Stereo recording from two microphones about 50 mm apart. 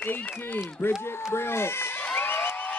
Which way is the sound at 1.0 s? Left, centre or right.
Left.